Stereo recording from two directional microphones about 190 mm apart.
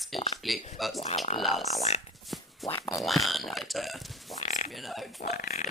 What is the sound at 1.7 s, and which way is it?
Speech, 35° left (ahead or behind).